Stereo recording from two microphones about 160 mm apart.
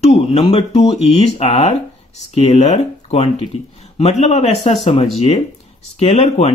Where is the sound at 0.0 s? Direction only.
40° left (ahead or behind).